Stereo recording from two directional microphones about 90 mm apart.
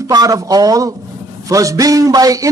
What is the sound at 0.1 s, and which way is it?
A man's voice, 45° right (ahead or behind).